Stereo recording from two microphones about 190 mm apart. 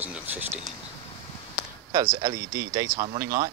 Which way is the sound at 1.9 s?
15° right (ahead or behind).